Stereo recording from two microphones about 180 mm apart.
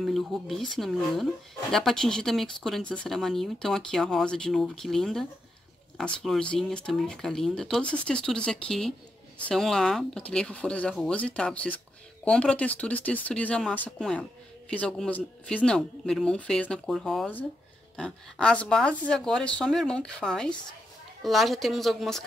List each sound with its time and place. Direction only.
0.0 s speech: centre (ahead or behind)